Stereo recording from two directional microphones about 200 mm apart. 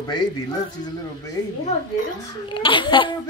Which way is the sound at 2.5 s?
25° left (ahead or behind).